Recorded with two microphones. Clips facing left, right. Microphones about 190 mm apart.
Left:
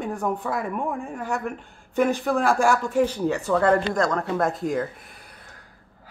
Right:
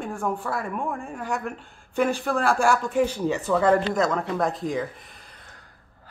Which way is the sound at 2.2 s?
Centre (ahead or behind).